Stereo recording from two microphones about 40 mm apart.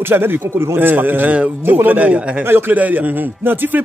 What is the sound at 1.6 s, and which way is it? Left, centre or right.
Speech, right.